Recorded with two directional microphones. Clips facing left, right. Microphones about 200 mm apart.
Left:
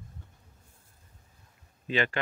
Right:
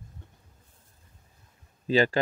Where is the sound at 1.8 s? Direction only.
35° right (ahead or behind).